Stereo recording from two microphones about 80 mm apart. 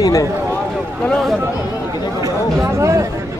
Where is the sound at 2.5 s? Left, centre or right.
Right.